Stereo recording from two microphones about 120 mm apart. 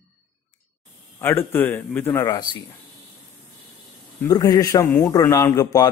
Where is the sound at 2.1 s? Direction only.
30° left (ahead or behind).